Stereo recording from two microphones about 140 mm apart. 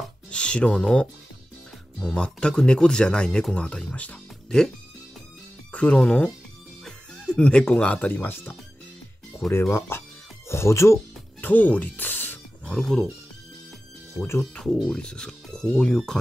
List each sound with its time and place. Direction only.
0.3 s speech: 5° left (ahead or behind)
5.7 s speech: 10° left (ahead or behind)
11.4 s music: 10° left (ahead or behind)
12.7 s speech: 5° left (ahead or behind)
14.4 s speech: 5° left (ahead or behind)